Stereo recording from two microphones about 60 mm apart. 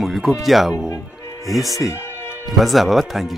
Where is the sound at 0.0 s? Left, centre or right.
Centre.